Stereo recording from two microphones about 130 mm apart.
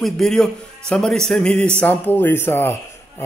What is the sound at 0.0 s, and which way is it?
A man's voice, 5° left (ahead or behind).